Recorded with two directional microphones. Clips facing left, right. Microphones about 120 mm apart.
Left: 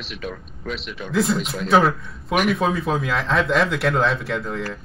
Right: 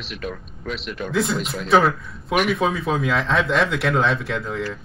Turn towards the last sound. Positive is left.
turn(degrees=0)  # may be behind; listen again after turning